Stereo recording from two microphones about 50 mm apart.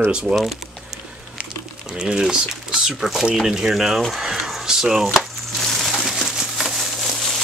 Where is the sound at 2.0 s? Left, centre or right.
Centre.